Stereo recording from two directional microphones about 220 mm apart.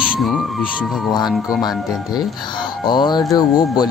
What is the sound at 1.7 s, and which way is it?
Speech, 20° left (ahead or behind).